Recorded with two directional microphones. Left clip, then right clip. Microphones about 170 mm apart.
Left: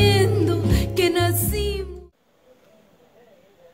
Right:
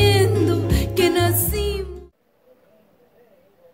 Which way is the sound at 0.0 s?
Centre (ahead or behind).